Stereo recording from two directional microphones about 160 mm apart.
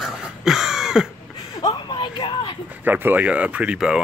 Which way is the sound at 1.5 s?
25° left (ahead or behind).